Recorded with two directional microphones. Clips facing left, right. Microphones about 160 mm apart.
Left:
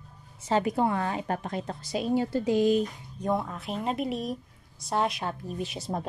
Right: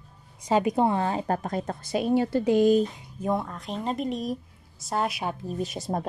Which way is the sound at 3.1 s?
Centre (ahead or behind).